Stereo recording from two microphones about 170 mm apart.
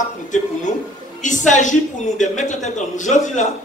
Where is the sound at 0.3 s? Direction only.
45° left (ahead or behind).